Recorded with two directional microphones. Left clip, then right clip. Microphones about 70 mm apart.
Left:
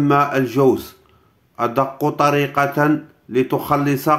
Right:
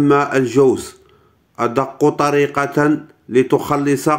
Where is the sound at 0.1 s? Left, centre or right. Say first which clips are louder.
Right 2 dB; right.